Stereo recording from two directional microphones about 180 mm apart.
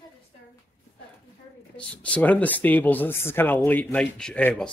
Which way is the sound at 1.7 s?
5° left (ahead or behind).